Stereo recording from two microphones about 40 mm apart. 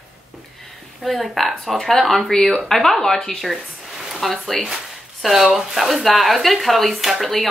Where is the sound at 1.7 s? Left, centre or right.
Centre.